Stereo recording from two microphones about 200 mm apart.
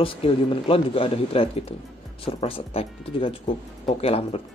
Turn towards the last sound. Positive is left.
turn(degrees=30)  # may be behind; listen again after turning